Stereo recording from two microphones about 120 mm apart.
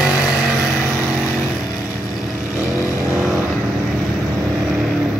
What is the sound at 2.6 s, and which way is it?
Vehicle, 25° left (ahead or behind).